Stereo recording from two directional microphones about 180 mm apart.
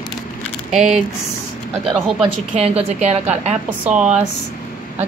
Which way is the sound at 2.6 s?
35° right (ahead or behind).